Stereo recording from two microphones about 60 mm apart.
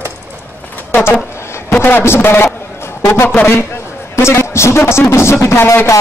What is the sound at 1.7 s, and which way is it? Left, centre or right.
A man's voice, left.